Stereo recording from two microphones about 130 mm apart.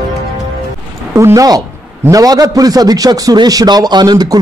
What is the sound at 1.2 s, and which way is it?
A man's voice, 25° right (ahead or behind).